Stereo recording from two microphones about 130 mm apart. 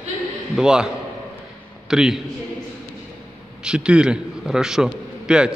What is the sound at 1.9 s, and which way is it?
Speech, 5° right (ahead or behind).